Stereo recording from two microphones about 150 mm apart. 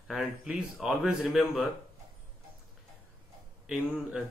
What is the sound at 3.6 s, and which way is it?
Speech, 5° right (ahead or behind).